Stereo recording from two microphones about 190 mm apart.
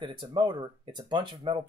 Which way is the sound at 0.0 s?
25° right (ahead or behind).